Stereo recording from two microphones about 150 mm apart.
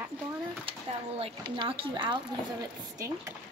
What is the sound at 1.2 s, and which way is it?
Speech, 35° right (ahead or behind).